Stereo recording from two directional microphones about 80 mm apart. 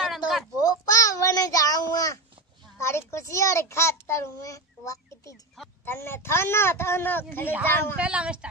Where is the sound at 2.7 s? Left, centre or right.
Left.